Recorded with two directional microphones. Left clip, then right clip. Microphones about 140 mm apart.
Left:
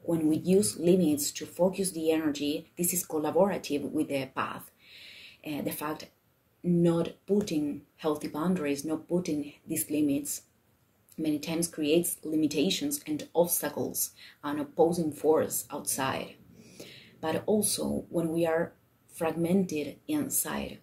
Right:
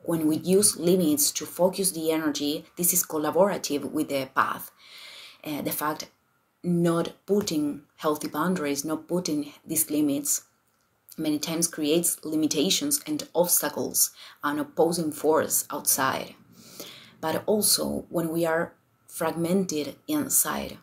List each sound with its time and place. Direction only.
0.1 s speech: 15° left (ahead or behind)